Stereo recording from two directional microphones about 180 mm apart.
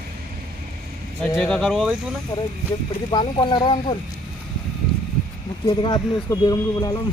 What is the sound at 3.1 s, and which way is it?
Speech, 25° left (ahead or behind).